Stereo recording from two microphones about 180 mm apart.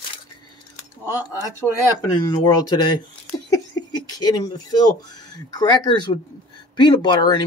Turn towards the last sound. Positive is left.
turn(degrees=25)  # may be behind; listen again after turning